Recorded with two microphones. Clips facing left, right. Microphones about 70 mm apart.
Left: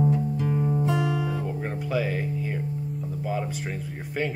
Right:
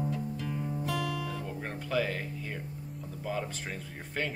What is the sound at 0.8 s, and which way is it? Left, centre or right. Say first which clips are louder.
Guitar: left 8 dB; left.